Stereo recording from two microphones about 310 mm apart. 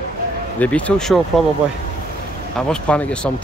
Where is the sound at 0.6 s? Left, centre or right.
Centre.